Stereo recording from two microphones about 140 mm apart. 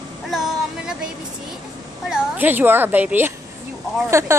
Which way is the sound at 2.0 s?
10° right (ahead or behind).